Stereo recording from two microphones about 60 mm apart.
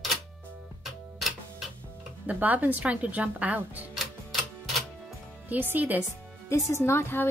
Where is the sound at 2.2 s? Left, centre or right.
Right.